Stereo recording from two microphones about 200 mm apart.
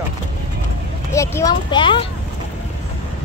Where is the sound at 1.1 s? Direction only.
15° left (ahead or behind).